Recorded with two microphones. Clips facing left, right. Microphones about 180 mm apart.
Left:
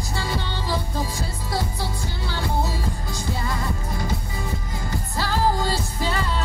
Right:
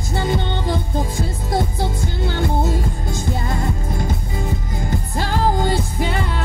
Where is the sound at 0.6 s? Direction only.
50° right (ahead or behind).